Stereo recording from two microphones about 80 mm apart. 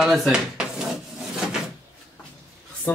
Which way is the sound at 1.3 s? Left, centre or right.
Centre.